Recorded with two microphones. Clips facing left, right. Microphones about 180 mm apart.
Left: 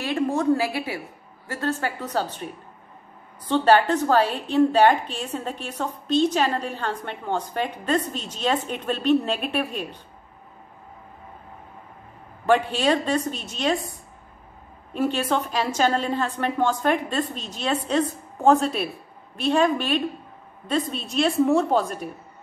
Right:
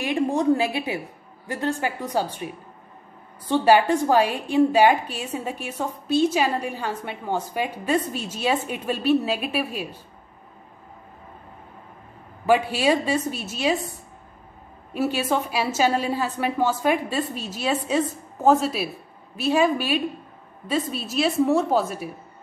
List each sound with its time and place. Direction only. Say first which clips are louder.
0.0 s a woman's voice: right 1 dB; 15° right (ahead or behind)
12.4 s a woman's voice: right 1 dB; 10° right (ahead or behind)
15.0 s a woman's voice: even; 10° right (ahead or behind)